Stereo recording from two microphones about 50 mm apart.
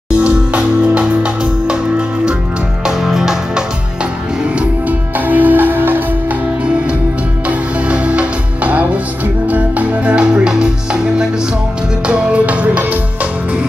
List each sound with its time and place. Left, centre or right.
0.1 s music: right
2.8 s music: centre
5.1 s music: right
7.4 s music: right